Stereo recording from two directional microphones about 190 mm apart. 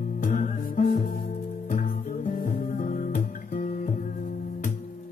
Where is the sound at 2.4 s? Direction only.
40° left (ahead or behind).